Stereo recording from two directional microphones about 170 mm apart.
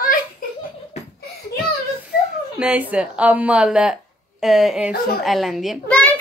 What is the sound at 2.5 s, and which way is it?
A child's voice, 5° right (ahead or behind).